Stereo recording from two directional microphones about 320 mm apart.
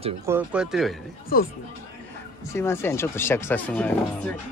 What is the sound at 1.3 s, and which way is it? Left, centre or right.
Speech, left.